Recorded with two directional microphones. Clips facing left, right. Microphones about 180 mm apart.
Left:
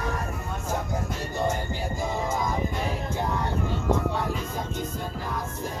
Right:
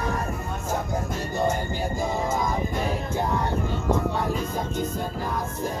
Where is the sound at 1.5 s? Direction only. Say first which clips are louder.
Right 3 dB; 45° right (ahead or behind).